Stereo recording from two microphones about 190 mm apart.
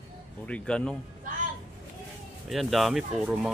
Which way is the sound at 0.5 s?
5° left (ahead or behind).